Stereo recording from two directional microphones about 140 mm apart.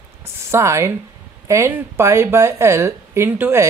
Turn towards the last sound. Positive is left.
turn(degrees=-15)  # may be behind; listen again after turning